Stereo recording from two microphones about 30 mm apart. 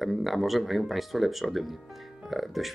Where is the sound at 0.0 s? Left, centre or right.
Centre.